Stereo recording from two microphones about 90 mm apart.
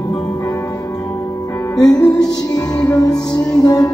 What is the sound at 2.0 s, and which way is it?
Music, 10° left (ahead or behind).